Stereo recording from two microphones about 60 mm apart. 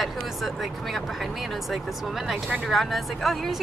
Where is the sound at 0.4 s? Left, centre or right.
Centre.